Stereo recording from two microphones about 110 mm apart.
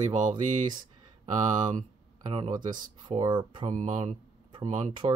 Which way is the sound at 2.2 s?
60° right (ahead or behind).